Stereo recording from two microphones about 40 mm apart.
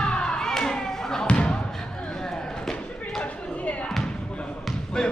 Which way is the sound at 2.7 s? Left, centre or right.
Left.